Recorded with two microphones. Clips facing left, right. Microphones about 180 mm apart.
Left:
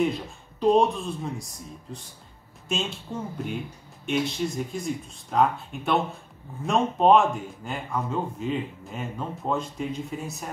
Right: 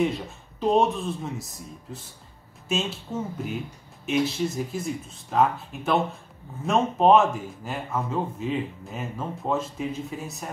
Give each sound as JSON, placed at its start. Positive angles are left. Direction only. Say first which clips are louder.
{"t": 0.0, "sound": "speech", "louder": "even", "side_deg": 0}